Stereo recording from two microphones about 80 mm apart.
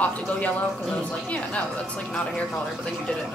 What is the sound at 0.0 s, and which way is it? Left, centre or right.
Speech, centre.